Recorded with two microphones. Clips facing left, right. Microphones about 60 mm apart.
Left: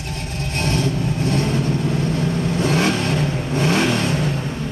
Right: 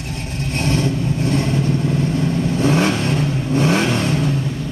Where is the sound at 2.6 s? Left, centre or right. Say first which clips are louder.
Right 2 dB; right.